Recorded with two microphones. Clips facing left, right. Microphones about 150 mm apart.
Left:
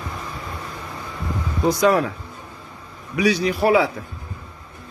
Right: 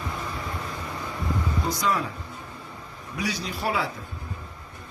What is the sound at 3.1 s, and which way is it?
Speech, 70° left (ahead or behind).